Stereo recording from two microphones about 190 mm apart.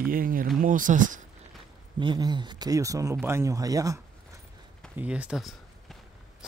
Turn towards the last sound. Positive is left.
turn(degrees=-5)  # may be behind; listen again after turning